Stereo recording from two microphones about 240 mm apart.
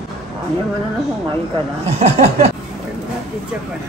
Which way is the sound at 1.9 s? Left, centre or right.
Right.